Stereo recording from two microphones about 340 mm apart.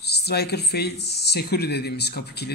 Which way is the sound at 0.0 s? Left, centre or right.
Left.